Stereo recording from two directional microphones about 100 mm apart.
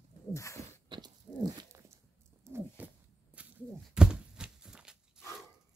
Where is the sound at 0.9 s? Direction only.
45° right (ahead or behind).